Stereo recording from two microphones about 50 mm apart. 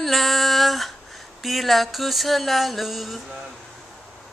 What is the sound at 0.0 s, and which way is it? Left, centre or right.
Female singing, centre.